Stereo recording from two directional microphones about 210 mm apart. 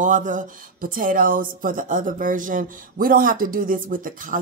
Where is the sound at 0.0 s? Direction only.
40° right (ahead or behind).